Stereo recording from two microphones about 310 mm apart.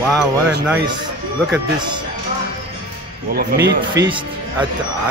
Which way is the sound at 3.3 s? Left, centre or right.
Right.